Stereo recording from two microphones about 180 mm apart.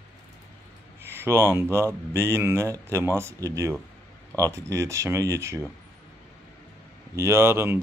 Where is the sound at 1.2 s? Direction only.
15° right (ahead or behind).